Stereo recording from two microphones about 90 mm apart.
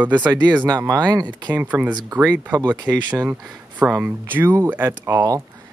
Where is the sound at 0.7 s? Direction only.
45° right (ahead or behind).